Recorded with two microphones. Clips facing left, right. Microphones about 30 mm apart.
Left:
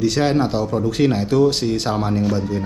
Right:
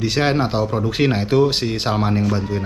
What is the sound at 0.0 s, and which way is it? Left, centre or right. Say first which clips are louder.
Speech: left 1 dB; right.